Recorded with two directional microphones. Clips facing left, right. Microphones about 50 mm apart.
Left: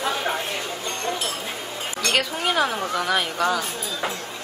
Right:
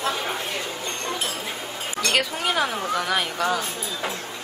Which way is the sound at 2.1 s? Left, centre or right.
Centre.